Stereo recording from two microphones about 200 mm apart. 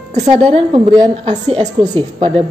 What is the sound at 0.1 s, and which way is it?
A woman's voice, 30° right (ahead or behind).